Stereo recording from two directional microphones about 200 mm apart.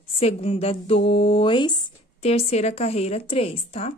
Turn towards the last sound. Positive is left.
turn(degrees=30)  # may be behind; listen again after turning